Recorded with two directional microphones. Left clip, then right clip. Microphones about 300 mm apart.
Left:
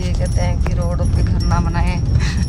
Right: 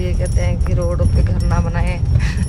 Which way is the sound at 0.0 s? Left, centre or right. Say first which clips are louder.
Even; centre.